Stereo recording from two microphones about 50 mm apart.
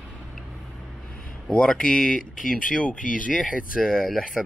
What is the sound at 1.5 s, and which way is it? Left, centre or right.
Speech, left.